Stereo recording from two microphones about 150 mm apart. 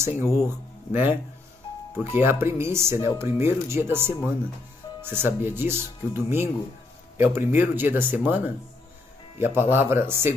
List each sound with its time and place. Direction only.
0.0 s speech: 15° right (ahead or behind)